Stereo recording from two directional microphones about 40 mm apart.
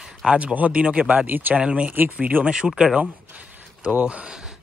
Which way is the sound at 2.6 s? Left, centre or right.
Centre.